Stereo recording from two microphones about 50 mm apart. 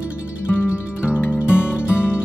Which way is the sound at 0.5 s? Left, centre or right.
Left.